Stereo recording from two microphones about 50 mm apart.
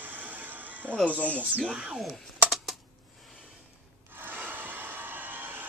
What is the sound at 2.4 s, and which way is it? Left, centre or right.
Typing, centre.